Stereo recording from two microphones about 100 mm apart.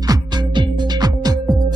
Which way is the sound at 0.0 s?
45° right (ahead or behind).